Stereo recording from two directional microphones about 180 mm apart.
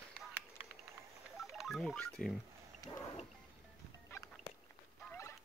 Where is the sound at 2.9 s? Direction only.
25° left (ahead or behind).